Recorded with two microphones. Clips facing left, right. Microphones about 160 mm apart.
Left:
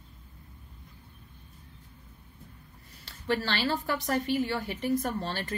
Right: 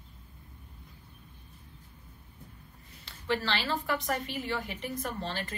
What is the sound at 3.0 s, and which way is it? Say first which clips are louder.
A woman's voice: left 1 dB; 40° left (ahead or behind).